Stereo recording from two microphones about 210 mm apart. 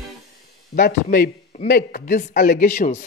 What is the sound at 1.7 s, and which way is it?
A man's voice, 45° left (ahead or behind).